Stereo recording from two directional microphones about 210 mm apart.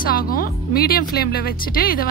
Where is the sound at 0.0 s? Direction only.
45° left (ahead or behind).